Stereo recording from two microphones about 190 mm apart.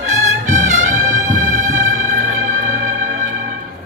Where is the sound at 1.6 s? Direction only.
45° right (ahead or behind).